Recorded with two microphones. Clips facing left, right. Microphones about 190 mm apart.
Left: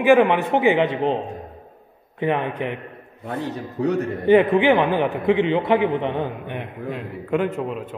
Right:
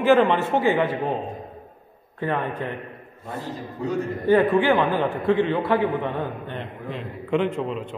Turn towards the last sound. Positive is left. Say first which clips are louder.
# even
turn(degrees=5)  # may be behind; listen again after turning